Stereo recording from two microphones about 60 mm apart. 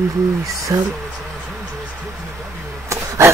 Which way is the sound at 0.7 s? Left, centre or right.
Right.